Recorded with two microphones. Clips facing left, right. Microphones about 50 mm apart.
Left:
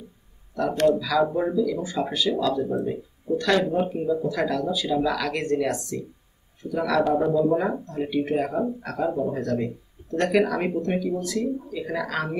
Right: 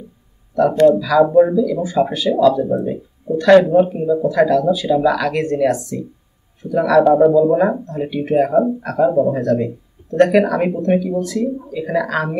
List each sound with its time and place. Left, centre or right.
0.6 s speech: right
3.3 s speech: centre
6.7 s speech: right
11.7 s speech: right